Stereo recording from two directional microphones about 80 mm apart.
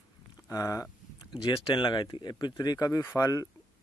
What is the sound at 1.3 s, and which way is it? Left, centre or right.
Speech, left.